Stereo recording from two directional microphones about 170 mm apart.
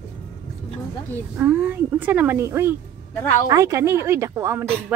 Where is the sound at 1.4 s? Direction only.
10° right (ahead or behind).